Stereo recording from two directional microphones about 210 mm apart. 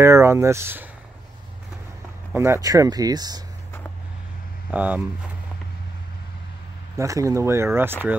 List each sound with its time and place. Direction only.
0.0 s speech: 10° right (ahead or behind)
2.3 s speech: 10° right (ahead or behind)
4.6 s speech: 5° right (ahead or behind)
7.0 s speech: 15° right (ahead or behind)